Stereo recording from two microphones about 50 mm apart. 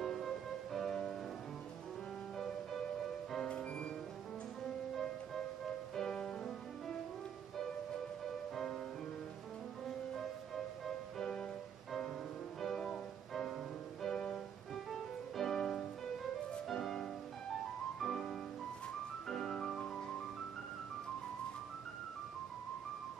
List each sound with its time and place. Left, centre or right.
0.0 s music: centre
2.3 s music: centre
3.4 s music: centre
5.9 s music: centre
9.8 s music: centre
12.5 s music: centre